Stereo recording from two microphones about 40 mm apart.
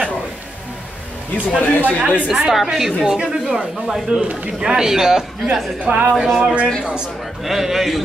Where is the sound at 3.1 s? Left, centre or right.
Centre.